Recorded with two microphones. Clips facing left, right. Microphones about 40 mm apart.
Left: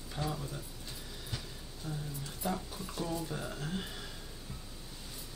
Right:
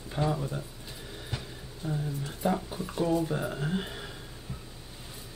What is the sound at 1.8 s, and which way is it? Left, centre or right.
Speech, right.